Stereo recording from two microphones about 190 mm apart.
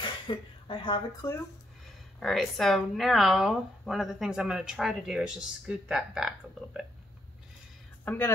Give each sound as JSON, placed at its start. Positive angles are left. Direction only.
{"t": 0.0, "sound": "a sound", "side_deg": 25}
{"t": 2.1, "sound": "speech", "side_deg": 0}
{"t": 8.0, "sound": "a woman's voice", "side_deg": 10}